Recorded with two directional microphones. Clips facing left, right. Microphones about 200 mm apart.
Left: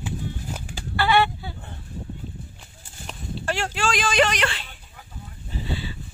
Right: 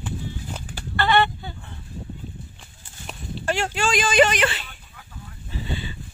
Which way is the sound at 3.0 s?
Centre (ahead or behind).